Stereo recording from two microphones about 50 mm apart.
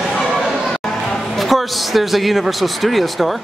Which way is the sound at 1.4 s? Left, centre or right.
Centre.